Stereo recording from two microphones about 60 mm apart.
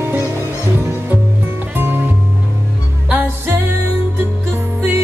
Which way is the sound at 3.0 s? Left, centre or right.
Right.